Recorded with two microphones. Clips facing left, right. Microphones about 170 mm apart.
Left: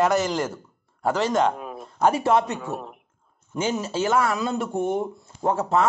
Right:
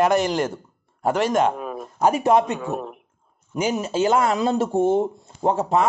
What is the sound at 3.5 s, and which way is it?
Speech, 15° right (ahead or behind).